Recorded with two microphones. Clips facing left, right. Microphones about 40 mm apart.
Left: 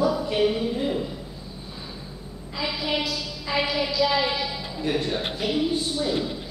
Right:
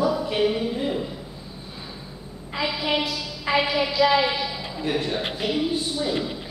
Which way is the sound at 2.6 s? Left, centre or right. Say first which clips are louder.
Right 2 dB; right.